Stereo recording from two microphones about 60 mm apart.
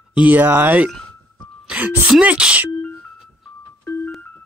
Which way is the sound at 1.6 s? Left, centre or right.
Right.